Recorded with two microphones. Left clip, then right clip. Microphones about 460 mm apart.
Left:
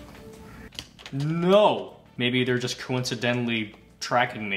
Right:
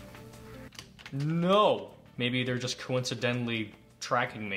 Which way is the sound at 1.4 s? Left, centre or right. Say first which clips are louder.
Left 5 dB; right.